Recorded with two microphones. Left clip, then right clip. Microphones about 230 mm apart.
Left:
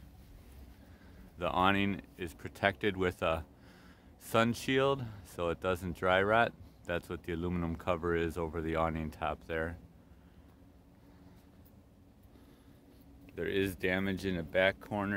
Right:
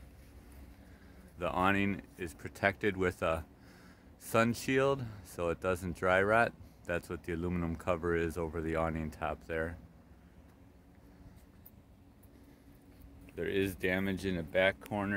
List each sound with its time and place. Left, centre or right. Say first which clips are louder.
1.4 s speech: left 1 dB; centre
13.3 s speech: even; centre